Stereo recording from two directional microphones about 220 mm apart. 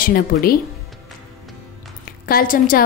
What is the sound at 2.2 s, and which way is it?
Speech, 40° left (ahead or behind).